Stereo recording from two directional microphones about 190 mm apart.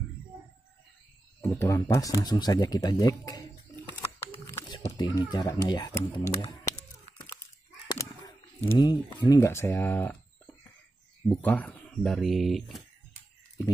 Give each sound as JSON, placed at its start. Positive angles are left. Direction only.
{"t": 1.4, "sound": "speech", "side_deg": 15}
{"t": 7.9, "sound": "speech", "side_deg": 20}